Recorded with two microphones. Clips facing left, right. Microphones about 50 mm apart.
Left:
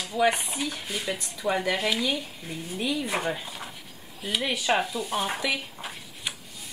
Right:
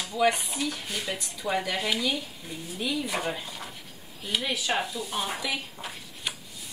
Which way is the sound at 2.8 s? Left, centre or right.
Left.